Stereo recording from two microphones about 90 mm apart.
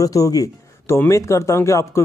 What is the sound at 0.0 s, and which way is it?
Speech, 40° left (ahead or behind).